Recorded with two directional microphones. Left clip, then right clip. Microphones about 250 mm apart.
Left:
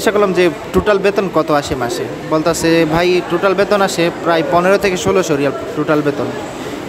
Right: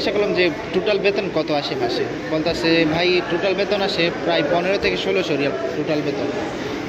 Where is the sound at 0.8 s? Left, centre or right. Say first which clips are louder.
Left 6 dB; left.